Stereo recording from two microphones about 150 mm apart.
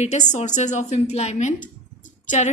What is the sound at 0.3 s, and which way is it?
A woman's voice, 50° left (ahead or behind).